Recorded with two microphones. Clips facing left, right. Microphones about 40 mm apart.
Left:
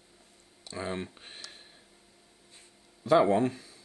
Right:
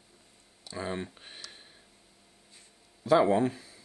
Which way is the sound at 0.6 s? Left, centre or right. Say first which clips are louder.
Even; centre.